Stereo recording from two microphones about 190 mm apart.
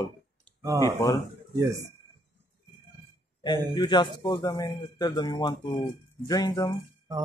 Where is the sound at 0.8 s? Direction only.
15° left (ahead or behind).